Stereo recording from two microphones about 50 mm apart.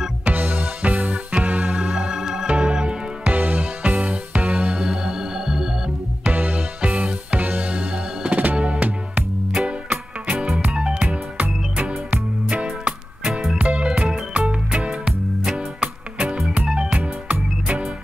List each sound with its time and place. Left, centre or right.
0.2 s music: right
3.3 s music: right; by 5.7 s centre
6.2 s music: right